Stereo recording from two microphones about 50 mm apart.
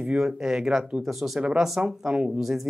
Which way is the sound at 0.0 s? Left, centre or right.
Centre.